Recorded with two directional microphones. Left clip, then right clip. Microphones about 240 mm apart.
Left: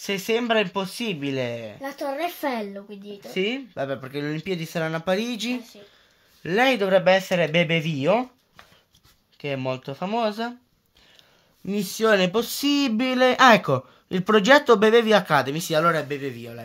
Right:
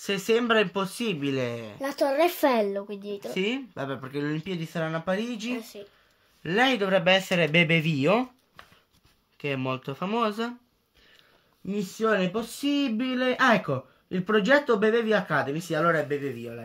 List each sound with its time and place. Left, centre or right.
0.0 s speech: centre
1.8 s speech: right
3.3 s speech: centre; by 5.5 s left
6.4 s speech: centre
9.4 s speech: centre
11.6 s speech: left